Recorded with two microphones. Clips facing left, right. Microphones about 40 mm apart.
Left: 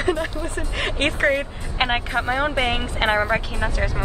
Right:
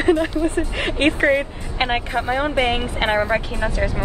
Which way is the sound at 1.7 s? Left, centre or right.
Centre.